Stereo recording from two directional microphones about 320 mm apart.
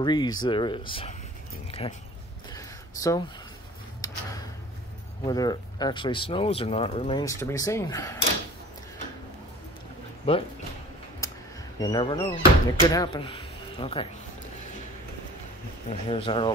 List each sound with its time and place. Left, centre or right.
0.0 s speech: centre
1.7 s a sound: centre
5.2 s speech: centre
10.3 s speech: centre
11.8 s speech: centre
15.9 s speech: centre